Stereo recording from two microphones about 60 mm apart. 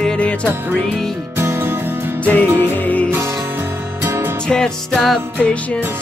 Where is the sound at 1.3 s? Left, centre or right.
Right.